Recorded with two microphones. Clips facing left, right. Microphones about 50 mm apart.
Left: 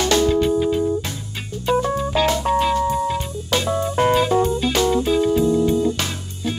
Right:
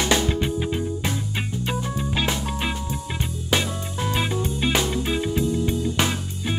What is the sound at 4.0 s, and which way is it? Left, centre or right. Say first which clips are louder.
Music: left 11 dB; left.